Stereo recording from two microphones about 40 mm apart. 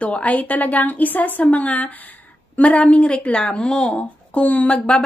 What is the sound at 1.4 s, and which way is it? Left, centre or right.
A woman's voice, left.